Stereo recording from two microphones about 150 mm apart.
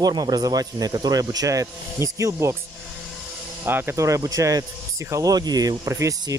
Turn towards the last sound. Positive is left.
turn(degrees=-25)  # may be behind; listen again after turning